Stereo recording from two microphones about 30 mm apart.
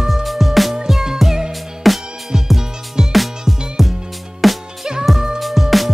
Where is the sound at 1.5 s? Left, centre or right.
Centre.